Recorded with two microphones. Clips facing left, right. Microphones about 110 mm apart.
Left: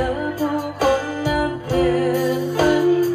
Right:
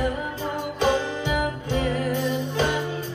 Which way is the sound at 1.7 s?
40° left (ahead or behind).